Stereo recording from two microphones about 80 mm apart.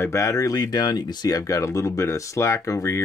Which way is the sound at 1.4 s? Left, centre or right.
Left.